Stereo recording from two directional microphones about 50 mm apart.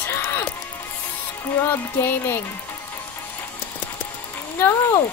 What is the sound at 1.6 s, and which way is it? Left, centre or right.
Speech, left.